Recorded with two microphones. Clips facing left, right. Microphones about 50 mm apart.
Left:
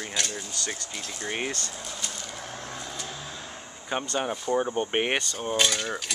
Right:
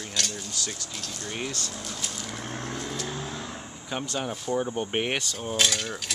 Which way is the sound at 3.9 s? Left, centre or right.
Left.